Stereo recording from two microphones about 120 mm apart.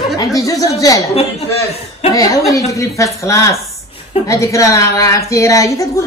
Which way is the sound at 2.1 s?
30° left (ahead or behind).